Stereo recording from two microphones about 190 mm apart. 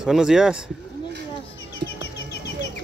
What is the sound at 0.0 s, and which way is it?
Speech, 5° right (ahead or behind).